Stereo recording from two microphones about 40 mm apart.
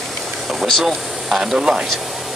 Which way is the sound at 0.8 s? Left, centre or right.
Centre.